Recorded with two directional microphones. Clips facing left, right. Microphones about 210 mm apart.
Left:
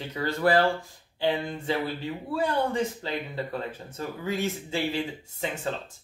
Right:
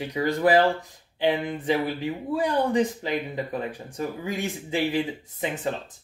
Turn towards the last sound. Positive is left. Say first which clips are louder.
# right 3 dB
turn(degrees=-15)  # may be behind; listen again after turning